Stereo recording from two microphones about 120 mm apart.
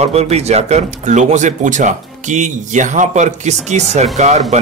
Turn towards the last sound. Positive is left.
turn(degrees=-75)  # may be behind; listen again after turning